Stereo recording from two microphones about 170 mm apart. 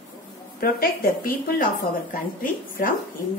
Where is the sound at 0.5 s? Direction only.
60° left (ahead or behind).